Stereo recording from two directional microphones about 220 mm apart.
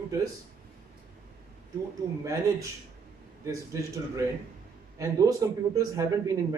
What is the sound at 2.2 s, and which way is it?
Speech, 15° right (ahead or behind).